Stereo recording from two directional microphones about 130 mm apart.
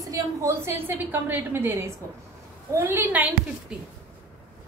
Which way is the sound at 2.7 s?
15° right (ahead or behind).